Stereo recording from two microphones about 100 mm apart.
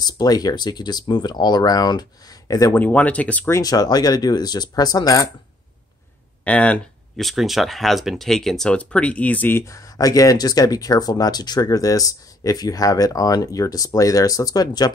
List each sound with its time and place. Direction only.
0.0 s speech: 40° left (ahead or behind)
2.7 s speech: 15° left (ahead or behind)
3.6 s speech: 40° left (ahead or behind)
6.4 s speech: 15° left (ahead or behind)
7.2 s speech: centre (ahead or behind); by 14.9 s 40° left (ahead or behind)